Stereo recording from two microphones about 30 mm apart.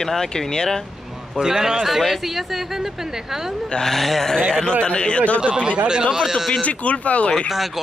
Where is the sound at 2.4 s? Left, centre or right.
Centre.